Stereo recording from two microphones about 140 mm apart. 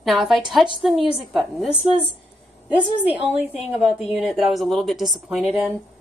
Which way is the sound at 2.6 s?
10° right (ahead or behind).